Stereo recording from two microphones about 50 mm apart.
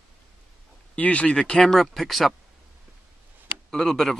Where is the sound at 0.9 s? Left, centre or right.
Left; by 2.3 s centre.